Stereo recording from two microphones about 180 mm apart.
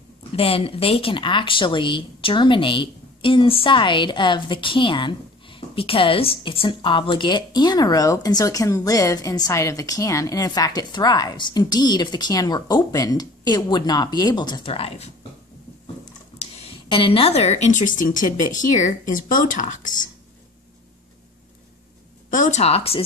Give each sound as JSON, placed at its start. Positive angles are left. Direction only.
{"t": 0.4, "sound": "speech", "side_deg": 30}
{"t": 16.3, "sound": "speech", "side_deg": 30}
{"t": 22.3, "sound": "speech", "side_deg": 40}